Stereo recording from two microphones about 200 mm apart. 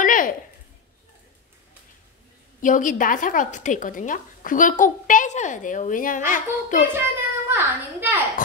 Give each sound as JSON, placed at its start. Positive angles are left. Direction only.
{"t": 0.0, "sound": "a sound", "side_deg": 40}
{"t": 2.6, "sound": "a woman's voice", "side_deg": 40}
{"t": 7.0, "sound": "a child's voice", "side_deg": -10}
{"t": 8.4, "sound": "speech", "side_deg": 40}